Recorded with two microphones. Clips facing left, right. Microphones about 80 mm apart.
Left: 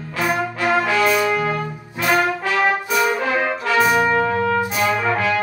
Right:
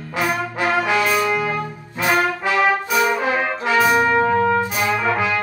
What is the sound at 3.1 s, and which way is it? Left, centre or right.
Brass instrument, centre.